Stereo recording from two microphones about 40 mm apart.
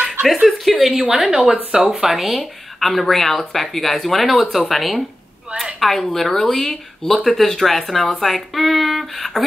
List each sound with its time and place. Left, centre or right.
0.5 s speech: centre
1.4 s speech: right
2.0 s a woman's voice: centre